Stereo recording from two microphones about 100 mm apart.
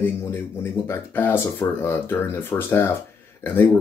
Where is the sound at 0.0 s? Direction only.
20° left (ahead or behind).